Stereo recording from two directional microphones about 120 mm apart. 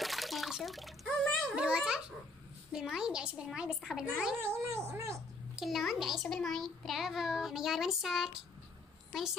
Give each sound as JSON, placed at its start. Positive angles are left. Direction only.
{"t": 0.0, "sound": "water", "side_deg": 0}
{"t": 1.8, "sound": "babbling", "side_deg": -5}
{"t": 2.7, "sound": "a child's voice", "side_deg": -5}
{"t": 4.4, "sound": "speech", "side_deg": -20}
{"t": 5.6, "sound": "a child's voice", "side_deg": 0}